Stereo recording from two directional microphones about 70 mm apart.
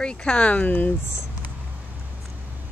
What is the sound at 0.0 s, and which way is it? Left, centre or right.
Speech, centre.